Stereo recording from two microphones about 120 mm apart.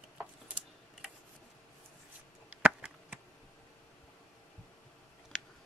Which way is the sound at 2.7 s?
5° right (ahead or behind).